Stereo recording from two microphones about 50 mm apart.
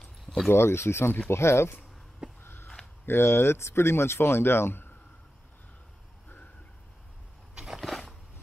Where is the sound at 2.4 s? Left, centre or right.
Left.